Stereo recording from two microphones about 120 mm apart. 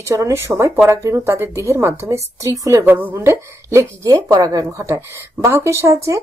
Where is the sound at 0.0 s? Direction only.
25° right (ahead or behind).